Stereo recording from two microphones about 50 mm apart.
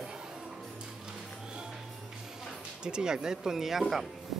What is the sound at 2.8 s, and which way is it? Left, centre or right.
Speech, centre.